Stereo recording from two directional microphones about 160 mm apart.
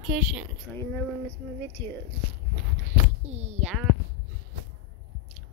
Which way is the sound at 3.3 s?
45° right (ahead or behind).